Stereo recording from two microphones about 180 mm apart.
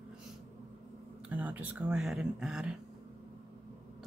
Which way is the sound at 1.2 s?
10° right (ahead or behind).